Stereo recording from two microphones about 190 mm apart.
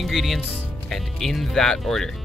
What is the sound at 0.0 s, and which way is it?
Speech, centre (ahead or behind).